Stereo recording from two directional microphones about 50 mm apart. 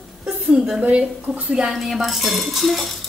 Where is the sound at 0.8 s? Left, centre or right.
Right.